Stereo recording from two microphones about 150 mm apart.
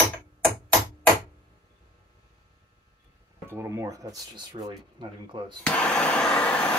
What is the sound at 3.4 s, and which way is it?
Speech, 15° right (ahead or behind).